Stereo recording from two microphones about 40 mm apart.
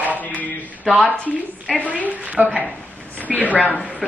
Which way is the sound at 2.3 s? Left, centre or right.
Right.